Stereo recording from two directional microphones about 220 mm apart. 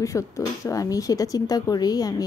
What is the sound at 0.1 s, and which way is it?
A woman's voice, 10° left (ahead or behind).